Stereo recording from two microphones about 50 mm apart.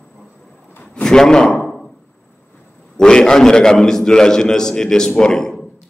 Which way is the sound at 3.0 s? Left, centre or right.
Centre.